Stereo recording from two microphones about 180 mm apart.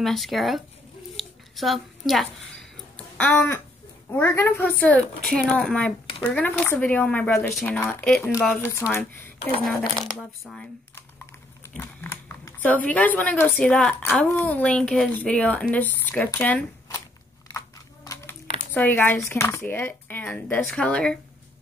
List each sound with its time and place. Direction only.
0.0 s speech: centre (ahead or behind)
1.1 s a sound: centre (ahead or behind)
3.0 s speech: 10° left (ahead or behind)
10.0 s speech: centre (ahead or behind)
11.6 s speech: 10° left (ahead or behind)
17.5 s a sound: 15° left (ahead or behind)
18.7 s speech: 10° left (ahead or behind)